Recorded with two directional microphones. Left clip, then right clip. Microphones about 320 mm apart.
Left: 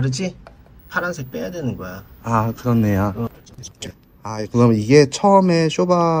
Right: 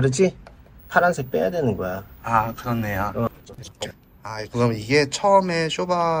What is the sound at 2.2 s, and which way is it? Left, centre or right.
Speech, left.